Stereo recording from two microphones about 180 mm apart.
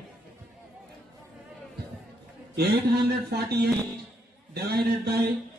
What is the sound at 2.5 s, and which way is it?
Speech, 65° right (ahead or behind).